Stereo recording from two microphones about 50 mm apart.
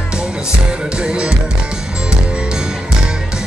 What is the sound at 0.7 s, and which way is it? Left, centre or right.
Music, centre.